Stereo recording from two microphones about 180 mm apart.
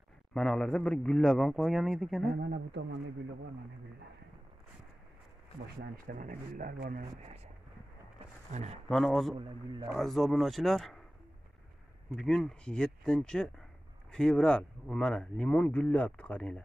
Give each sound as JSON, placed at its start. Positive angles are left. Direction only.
{"t": 0.3, "sound": "speech", "side_deg": 5}
{"t": 2.3, "sound": "speech", "side_deg": -70}
{"t": 6.0, "sound": "speech", "side_deg": -50}
{"t": 8.8, "sound": "speech", "side_deg": 5}
{"t": 9.4, "sound": "a man's voice", "side_deg": -25}
{"t": 9.8, "sound": "speech", "side_deg": 0}
{"t": 12.2, "sound": "speech", "side_deg": 0}